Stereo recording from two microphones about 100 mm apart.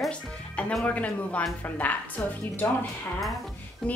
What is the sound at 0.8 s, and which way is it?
A woman's voice, 15° left (ahead or behind).